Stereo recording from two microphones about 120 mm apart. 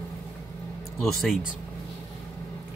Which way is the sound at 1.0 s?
Centre (ahead or behind).